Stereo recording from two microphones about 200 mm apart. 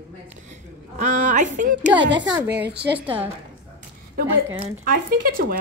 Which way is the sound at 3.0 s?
10° right (ahead or behind).